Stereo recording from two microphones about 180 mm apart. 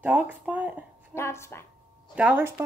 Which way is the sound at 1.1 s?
15° left (ahead or behind).